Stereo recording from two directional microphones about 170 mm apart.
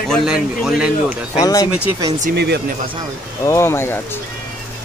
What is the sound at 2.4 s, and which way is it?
Speech, 75° right (ahead or behind).